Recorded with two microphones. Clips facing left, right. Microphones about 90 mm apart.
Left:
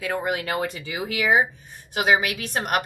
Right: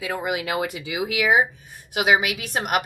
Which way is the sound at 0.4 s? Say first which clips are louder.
Right 1 dB; 5° right (ahead or behind).